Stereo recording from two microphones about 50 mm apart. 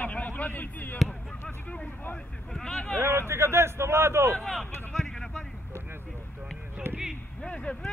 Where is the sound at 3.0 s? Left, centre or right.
Right.